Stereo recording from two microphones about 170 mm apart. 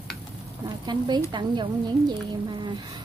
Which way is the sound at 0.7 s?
25° right (ahead or behind).